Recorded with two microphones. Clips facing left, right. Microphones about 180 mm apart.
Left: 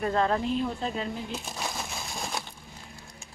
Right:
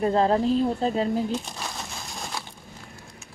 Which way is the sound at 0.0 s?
30° right (ahead or behind).